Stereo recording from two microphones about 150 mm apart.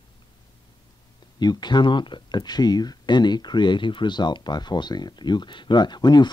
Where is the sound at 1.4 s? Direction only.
30° left (ahead or behind).